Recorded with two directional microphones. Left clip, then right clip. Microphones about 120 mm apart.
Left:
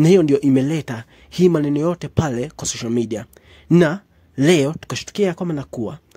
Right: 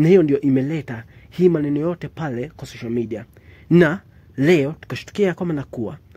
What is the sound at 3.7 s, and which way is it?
Speech, 25° left (ahead or behind).